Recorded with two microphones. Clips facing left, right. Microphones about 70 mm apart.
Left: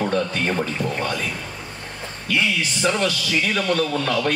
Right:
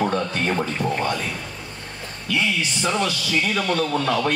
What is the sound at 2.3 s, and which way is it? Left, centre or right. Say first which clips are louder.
Speech: left 1 dB; left.